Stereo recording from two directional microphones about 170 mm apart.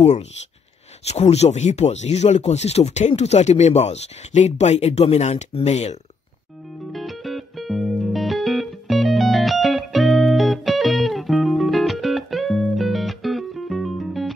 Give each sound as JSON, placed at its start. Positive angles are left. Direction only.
{"t": 1.0, "sound": "speech", "side_deg": 40}
{"t": 6.9, "sound": "music", "side_deg": 0}